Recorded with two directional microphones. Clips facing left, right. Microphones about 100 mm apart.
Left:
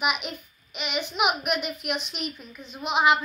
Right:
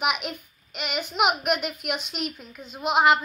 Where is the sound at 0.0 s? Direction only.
65° right (ahead or behind).